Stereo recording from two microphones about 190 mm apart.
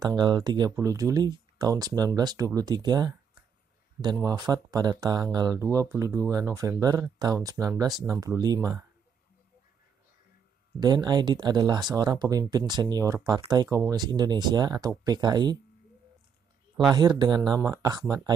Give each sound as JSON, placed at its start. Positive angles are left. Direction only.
{"t": 0.0, "sound": "speech", "side_deg": -25}
{"t": 10.8, "sound": "speech", "side_deg": -20}
{"t": 16.9, "sound": "speech", "side_deg": -25}